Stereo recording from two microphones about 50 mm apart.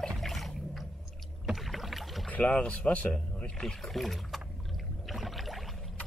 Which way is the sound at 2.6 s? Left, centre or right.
Left.